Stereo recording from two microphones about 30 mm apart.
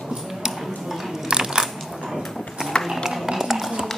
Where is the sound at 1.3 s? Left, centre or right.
Right.